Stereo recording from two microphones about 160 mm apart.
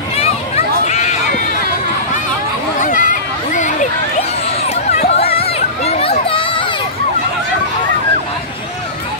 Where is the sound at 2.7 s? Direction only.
50° left (ahead or behind).